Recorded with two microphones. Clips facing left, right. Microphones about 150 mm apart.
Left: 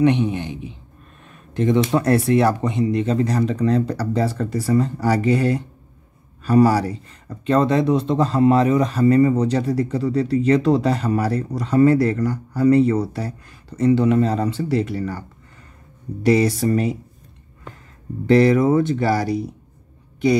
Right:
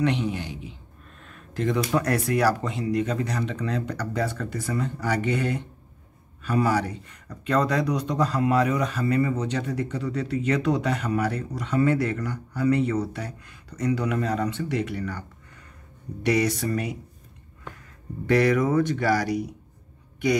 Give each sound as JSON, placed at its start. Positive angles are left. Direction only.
{"t": 0.0, "sound": "speech", "side_deg": 20}
{"t": 1.2, "sound": "a sound", "side_deg": 20}
{"t": 2.0, "sound": "speech", "side_deg": 30}
{"t": 18.3, "sound": "speech", "side_deg": 30}